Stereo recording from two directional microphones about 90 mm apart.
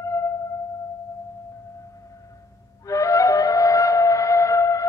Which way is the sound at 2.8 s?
35° left (ahead or behind).